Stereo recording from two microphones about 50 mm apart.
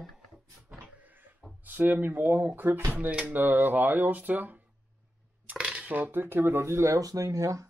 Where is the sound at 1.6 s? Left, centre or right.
Right.